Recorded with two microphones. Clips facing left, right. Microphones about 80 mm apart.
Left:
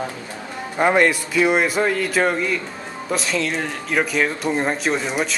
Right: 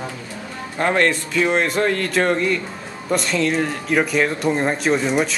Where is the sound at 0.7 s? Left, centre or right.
Centre.